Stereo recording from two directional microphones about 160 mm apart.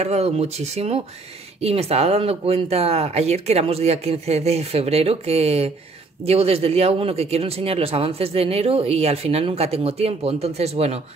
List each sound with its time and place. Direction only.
0.0 s speech: 40° right (ahead or behind)